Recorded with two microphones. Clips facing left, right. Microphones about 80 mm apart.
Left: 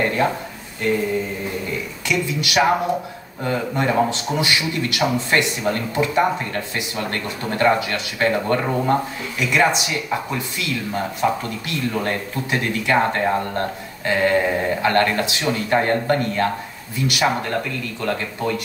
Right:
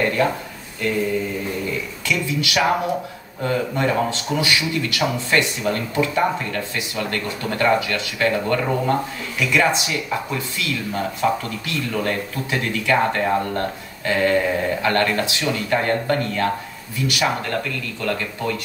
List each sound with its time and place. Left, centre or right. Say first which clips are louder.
0.0 s a sound: even; left
2.0 s a man's voice: left 1 dB; left
11.9 s a man's voice: right 2 dB; left